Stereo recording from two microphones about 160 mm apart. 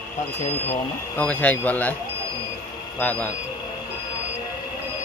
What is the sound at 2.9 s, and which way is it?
Speech, 10° left (ahead or behind).